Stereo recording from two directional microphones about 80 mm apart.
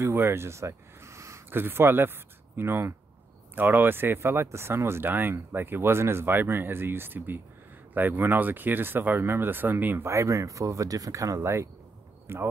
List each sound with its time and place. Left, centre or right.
0.0 s speech: right
10.0 s speech: right